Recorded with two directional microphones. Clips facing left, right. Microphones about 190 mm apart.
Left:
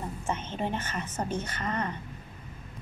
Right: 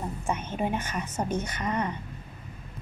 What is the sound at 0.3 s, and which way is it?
A woman's voice, 10° right (ahead or behind).